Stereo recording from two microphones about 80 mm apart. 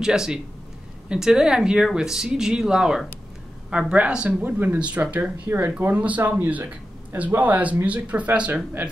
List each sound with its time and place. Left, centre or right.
0.0 s speech: centre